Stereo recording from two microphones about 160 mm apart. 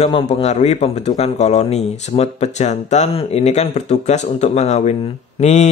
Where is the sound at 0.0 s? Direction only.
40° left (ahead or behind).